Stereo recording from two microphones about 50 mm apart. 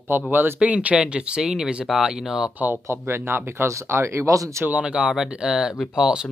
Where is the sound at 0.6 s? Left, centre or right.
Right.